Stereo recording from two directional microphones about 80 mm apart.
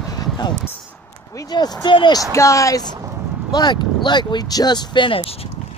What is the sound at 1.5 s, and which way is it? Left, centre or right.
Speech, left.